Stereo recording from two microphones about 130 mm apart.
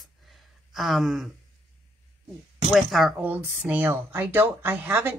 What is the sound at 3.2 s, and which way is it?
Speech, 10° right (ahead or behind).